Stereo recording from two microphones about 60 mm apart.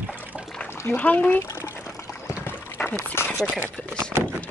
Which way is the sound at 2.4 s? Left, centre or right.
Left.